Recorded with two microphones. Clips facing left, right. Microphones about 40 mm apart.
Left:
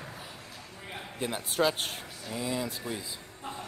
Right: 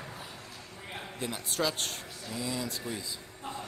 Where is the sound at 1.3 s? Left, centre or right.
Left.